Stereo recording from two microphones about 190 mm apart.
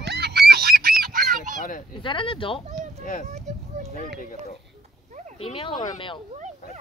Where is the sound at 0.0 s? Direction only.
60° right (ahead or behind).